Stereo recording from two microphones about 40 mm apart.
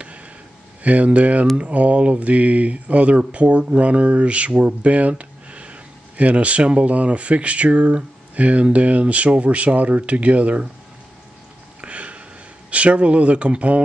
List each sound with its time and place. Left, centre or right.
0.8 s speech: right
11.8 s a sound: right
12.7 s speech: right